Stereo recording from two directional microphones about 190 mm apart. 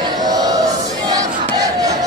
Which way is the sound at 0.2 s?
20° right (ahead or behind).